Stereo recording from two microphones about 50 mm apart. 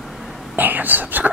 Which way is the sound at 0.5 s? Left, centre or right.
Right.